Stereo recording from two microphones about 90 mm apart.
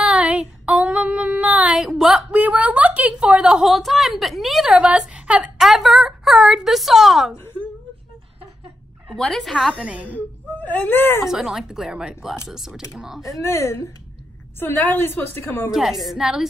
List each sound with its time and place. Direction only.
0.0 s child singing: 15° right (ahead or behind)
1.8 s a sound: 5° right (ahead or behind)
2.4 s a sound: 15° right (ahead or behind)
5.7 s a sound: centre (ahead or behind)
9.1 s a woman's voice: 5° left (ahead or behind)
9.8 s a woman's voice: 15° right (ahead or behind)
10.0 s speech: 20° left (ahead or behind)
11.2 s a woman's voice: 5° right (ahead or behind)
13.2 s a woman's voice: 35° left (ahead or behind)
15.7 s a woman's voice: 5° right (ahead or behind)